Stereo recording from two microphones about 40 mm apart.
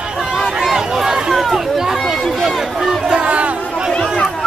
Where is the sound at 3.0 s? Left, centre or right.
Right.